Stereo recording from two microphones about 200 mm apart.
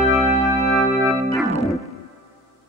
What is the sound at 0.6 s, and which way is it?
Music, 15° left (ahead or behind).